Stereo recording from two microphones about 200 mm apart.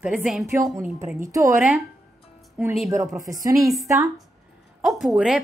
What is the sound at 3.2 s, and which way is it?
Speech, 15° right (ahead or behind).